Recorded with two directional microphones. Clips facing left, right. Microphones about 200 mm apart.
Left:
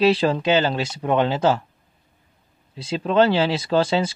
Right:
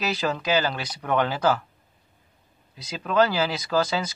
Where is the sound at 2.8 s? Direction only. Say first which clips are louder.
Left 4 dB; 30° left (ahead or behind).